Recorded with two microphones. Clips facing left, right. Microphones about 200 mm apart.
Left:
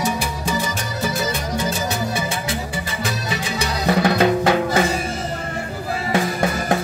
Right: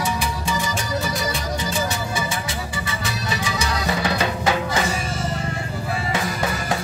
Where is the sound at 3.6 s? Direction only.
55° left (ahead or behind).